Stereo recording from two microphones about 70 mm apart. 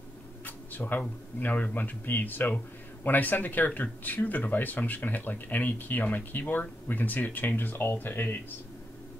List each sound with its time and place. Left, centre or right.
0.5 s speech: left